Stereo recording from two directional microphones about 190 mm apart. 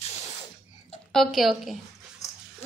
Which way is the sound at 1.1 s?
Centre (ahead or behind).